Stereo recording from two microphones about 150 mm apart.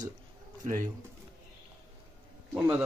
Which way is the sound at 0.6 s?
60° right (ahead or behind).